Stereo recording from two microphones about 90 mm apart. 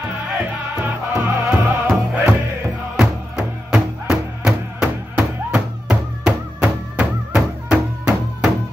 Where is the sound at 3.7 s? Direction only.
5° right (ahead or behind).